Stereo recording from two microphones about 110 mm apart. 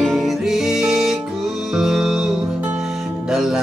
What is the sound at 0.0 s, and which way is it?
Music, centre (ahead or behind).